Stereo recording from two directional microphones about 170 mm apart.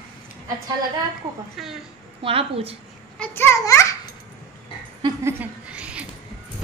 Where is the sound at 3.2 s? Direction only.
15° left (ahead or behind).